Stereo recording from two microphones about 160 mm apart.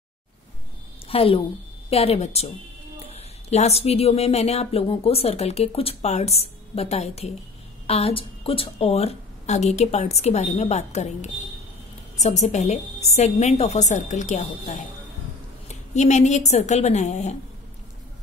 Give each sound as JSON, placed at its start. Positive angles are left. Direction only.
{"t": 1.0, "sound": "a woman's voice", "side_deg": 35}
{"t": 15.7, "sound": "a woman's voice", "side_deg": 45}